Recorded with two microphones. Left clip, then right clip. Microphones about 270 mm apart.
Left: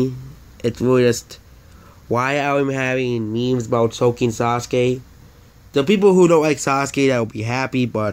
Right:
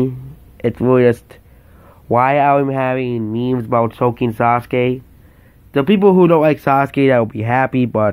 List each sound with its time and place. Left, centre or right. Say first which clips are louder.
0.6 s speech: right 3 dB; centre